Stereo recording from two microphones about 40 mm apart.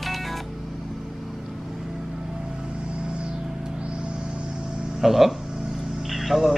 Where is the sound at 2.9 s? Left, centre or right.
Right.